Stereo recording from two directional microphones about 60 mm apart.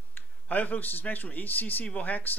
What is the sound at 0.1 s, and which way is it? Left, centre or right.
Speech, left.